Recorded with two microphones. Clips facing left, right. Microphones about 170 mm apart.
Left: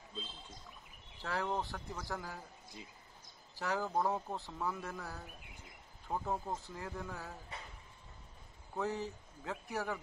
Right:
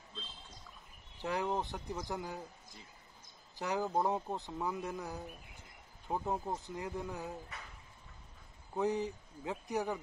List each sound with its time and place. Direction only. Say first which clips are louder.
1.2 s speech: right 2 dB; 15° right (ahead or behind)
3.5 s speech: right 2 dB; 15° right (ahead or behind)
8.7 s speech: right 4 dB; 15° right (ahead or behind)